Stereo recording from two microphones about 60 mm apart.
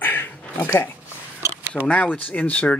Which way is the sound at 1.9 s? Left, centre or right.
Left.